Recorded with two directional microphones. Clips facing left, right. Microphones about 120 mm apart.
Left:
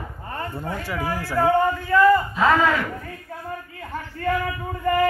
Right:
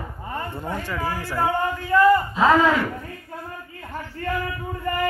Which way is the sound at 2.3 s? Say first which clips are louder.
Right 2 dB; 15° right (ahead or behind).